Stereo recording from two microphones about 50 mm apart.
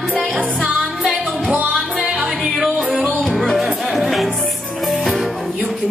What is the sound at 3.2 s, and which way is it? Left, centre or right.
Music, centre.